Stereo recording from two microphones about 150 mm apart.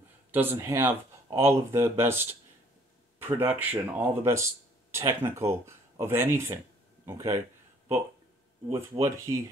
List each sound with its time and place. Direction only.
0.3 s speech: 15° right (ahead or behind)
3.3 s speech: 15° right (ahead or behind)
8.6 s speech: 15° right (ahead or behind)